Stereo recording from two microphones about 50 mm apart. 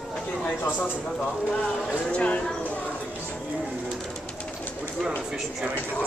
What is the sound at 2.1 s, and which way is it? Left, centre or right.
Speech, left.